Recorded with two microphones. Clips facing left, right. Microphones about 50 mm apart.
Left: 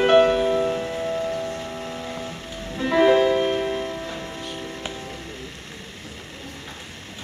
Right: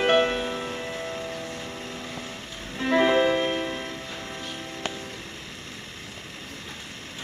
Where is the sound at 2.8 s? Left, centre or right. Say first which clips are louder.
Left 4 dB; centre.